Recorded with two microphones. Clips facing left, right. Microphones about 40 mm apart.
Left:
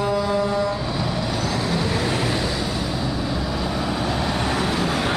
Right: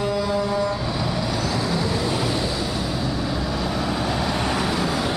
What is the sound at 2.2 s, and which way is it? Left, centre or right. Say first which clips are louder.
Vehicle: left 1 dB; left.